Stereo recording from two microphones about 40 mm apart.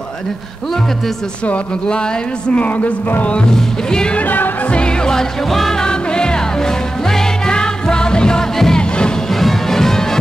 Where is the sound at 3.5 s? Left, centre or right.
Centre.